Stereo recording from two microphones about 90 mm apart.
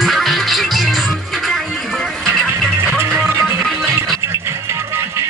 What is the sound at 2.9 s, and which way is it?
Music, 20° right (ahead or behind).